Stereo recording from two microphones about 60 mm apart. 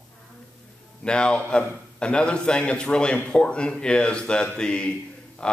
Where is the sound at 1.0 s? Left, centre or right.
Centre.